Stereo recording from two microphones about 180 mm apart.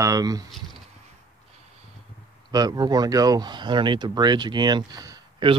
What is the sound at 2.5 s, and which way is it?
Speech, 20° right (ahead or behind).